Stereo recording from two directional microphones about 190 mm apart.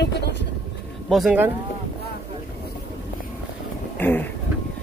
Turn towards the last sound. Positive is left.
turn(degrees=10)  # may be behind; listen again after turning